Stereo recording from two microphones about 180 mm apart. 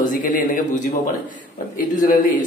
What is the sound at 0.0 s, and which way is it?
Speech, 50° left (ahead or behind).